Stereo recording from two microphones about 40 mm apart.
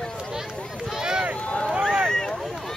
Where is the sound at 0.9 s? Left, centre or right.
Centre.